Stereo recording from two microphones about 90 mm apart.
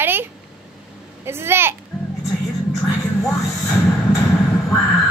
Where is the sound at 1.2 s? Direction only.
25° right (ahead or behind).